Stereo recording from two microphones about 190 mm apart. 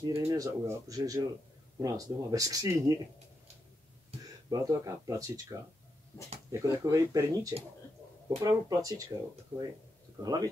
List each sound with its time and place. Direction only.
0.0 s speech: 20° right (ahead or behind)
4.2 s speech: 20° right (ahead or behind)